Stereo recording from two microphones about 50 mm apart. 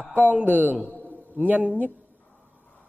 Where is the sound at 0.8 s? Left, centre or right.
Right.